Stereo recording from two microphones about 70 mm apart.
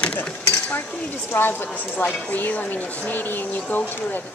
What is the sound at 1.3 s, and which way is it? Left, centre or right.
A woman's voice, left.